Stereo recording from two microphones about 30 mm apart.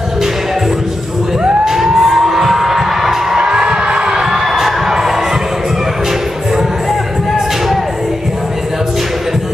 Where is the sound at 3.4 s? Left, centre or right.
Right.